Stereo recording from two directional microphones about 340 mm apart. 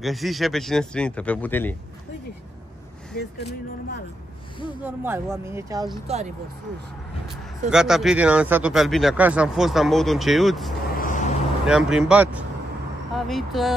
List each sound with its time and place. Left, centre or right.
0.0 s speech: centre
3.2 s speech: left
4.8 s speech: centre
7.7 s speech: centre
10.9 s vehicle: left
11.6 s speech: centre